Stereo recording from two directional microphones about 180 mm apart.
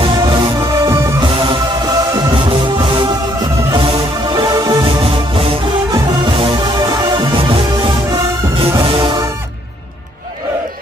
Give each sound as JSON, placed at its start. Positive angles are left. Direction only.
{"t": 0.0, "sound": "music", "side_deg": -25}